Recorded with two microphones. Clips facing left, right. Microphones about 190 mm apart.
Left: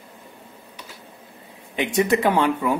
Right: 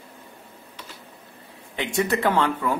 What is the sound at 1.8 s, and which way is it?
A man's voice, 20° left (ahead or behind).